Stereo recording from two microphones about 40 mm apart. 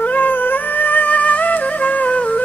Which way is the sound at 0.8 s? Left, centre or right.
Left.